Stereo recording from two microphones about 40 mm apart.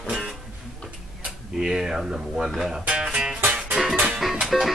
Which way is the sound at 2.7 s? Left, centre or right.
Right.